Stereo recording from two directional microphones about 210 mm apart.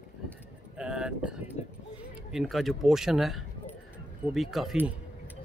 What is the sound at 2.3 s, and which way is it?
Speech, centre (ahead or behind).